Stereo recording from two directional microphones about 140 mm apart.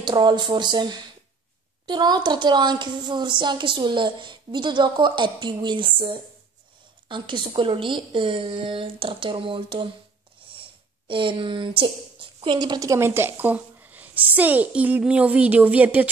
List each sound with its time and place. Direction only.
0.0 s a woman's voice: 30° right (ahead or behind); by 16.1 s 10° right (ahead or behind)